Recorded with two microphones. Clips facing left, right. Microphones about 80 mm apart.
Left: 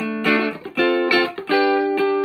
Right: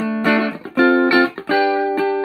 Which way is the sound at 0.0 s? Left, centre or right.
Right.